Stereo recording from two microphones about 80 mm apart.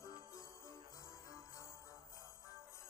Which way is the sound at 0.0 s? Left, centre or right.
Left.